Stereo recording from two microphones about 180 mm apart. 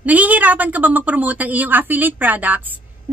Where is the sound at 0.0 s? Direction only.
10° right (ahead or behind).